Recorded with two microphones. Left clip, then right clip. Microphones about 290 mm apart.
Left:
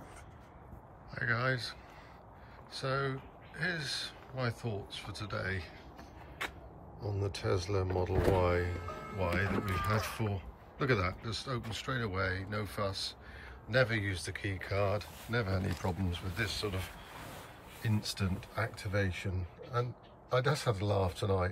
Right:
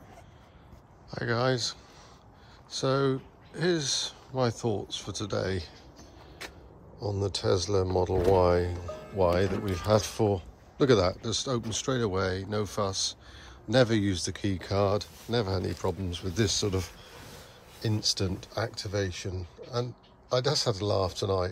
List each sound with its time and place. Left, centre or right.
1.1 s a man's voice: centre
7.0 s a man's voice: centre
16.3 s a man's voice: centre
17.8 s a man's voice: centre